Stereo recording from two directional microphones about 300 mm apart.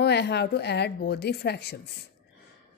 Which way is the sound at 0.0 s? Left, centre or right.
Left.